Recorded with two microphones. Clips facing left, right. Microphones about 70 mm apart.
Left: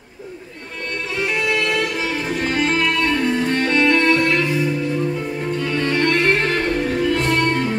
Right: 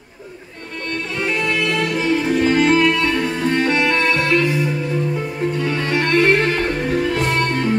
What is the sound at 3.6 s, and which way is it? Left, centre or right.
Music, centre.